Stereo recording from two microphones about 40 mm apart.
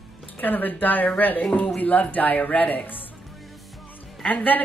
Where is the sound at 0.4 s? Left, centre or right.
Left.